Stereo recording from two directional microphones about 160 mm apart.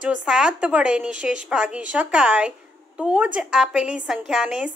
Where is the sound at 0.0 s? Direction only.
5° right (ahead or behind).